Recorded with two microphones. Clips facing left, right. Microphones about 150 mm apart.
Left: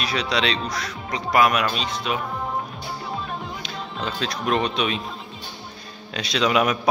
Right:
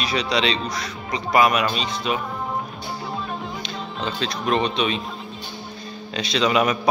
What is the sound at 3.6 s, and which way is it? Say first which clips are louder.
Speech: right 1 dB; 5° left (ahead or behind).